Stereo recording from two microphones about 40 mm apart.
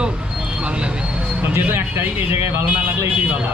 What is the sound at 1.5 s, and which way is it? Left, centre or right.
Speech, right.